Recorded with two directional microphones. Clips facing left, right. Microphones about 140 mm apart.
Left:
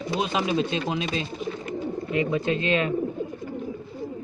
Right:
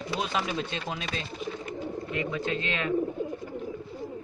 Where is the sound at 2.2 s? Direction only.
20° left (ahead or behind).